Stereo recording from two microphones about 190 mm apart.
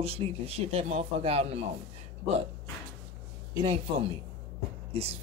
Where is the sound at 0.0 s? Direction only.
30° right (ahead or behind).